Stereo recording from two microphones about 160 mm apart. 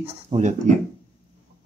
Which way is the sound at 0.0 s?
45° right (ahead or behind).